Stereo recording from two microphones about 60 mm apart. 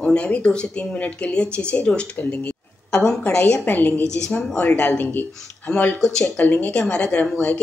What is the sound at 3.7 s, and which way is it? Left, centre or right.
A woman's voice, left.